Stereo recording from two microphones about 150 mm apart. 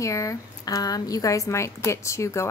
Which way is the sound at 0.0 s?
20° left (ahead or behind).